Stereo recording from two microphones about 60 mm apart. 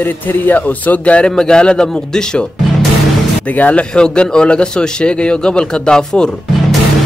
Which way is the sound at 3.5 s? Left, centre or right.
Left.